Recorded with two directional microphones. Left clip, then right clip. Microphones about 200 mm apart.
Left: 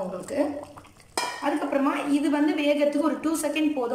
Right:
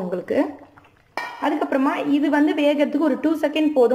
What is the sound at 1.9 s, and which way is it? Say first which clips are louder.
A woman's voice: right 5 dB; 40° right (ahead or behind).